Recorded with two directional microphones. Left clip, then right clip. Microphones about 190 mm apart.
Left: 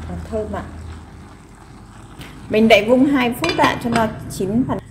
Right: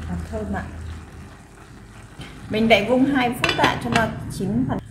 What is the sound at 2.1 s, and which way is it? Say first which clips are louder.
A woman's voice: left 7 dB; 30° left (ahead or behind).